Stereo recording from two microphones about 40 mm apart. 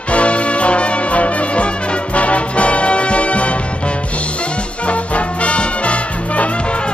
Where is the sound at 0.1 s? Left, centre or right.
Left.